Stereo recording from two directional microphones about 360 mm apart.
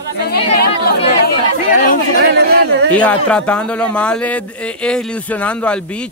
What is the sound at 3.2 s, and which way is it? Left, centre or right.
Speech, centre.